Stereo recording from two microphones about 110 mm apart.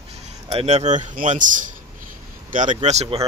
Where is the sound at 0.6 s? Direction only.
90° right.